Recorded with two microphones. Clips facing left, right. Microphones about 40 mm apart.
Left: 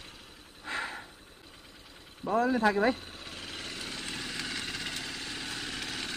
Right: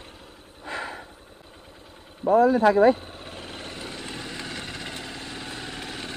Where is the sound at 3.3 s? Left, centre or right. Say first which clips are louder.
Right 3 dB; centre.